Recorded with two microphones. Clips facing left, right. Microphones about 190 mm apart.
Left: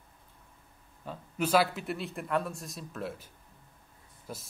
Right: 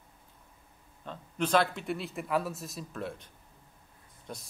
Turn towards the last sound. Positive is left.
turn(degrees=5)  # may be behind; listen again after turning